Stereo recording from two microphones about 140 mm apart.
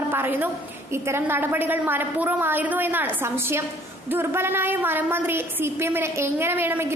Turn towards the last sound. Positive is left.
turn(degrees=-15)  # may be behind; listen again after turning